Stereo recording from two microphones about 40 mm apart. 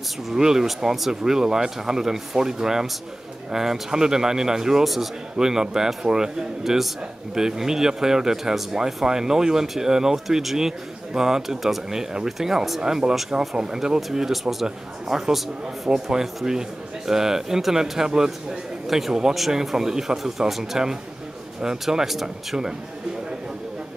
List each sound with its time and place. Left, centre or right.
0.3 s speech: centre
5.4 s speech: centre
13.1 s speech: centre
21.9 s speech: centre